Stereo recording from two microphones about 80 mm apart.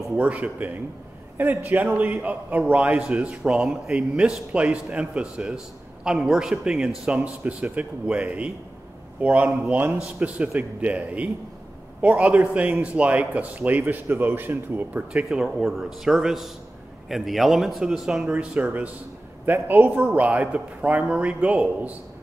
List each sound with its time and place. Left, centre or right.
0.1 s a man's voice: centre
15.2 s a man's voice: centre
18.2 s a man's voice: centre